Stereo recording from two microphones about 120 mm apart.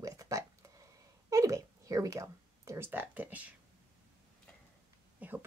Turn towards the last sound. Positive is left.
turn(degrees=-15)  # may be behind; listen again after turning